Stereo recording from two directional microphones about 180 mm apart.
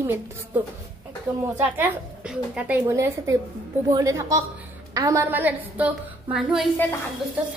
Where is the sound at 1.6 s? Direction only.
10° right (ahead or behind).